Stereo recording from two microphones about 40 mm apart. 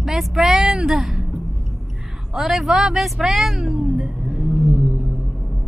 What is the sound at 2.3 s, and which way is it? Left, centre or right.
A woman's voice, centre.